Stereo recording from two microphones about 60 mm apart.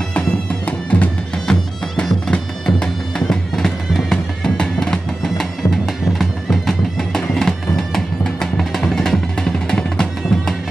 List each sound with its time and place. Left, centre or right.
0.7 s music: left
2.0 s music: centre